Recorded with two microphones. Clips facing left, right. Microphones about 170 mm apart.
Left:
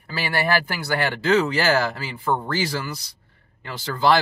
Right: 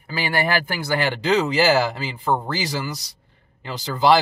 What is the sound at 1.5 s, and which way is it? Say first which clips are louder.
Speech: right 3 dB; 15° right (ahead or behind).